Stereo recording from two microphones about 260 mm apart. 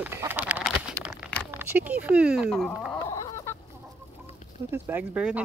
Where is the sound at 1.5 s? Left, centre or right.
Centre.